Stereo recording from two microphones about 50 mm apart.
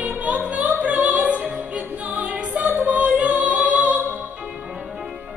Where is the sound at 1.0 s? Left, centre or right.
Right.